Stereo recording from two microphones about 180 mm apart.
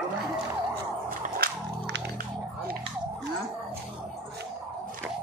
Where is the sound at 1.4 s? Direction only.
55° right (ahead or behind).